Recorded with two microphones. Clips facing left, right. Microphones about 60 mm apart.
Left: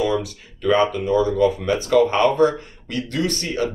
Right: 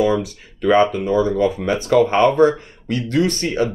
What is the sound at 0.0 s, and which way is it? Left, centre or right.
Speech, right.